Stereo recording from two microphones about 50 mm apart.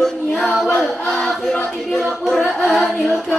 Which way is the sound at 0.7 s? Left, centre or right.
Centre.